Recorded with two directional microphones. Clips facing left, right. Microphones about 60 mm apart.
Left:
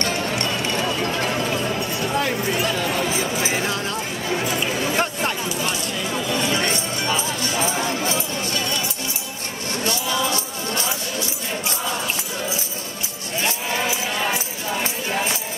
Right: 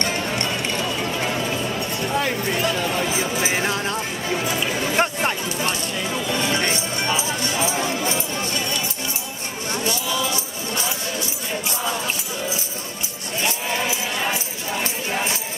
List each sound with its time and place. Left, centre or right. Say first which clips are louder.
0.0 s run: left 1 dB; right
1.0 s a sound: left 1 dB; centre
2.1 s speech: even; centre
3.1 s speech: even; right
4.9 s chatter: right 2 dB; right
7.2 s music: even; centre